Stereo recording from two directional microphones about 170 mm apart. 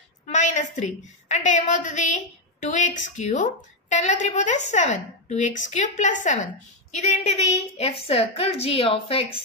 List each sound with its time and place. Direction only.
0.3 s a woman's voice: 45° left (ahead or behind)